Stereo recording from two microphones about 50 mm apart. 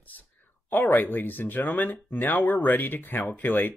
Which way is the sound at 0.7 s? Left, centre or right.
Left.